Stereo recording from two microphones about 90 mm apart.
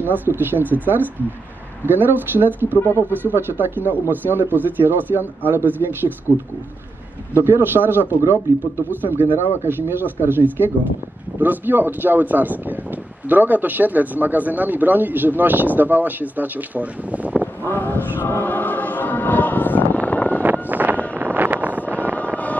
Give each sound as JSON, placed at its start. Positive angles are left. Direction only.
{"t": 0.0, "sound": "speech", "side_deg": -20}
{"t": 7.3, "sound": "speech", "side_deg": -25}
{"t": 17.7, "sound": "vehicle", "side_deg": 20}
{"t": 18.2, "sound": "choir", "side_deg": 20}
{"t": 20.4, "sound": "vehicle", "side_deg": -20}